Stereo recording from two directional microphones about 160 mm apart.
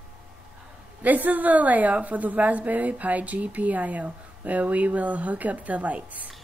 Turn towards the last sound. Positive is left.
turn(degrees=-10)  # may be behind; listen again after turning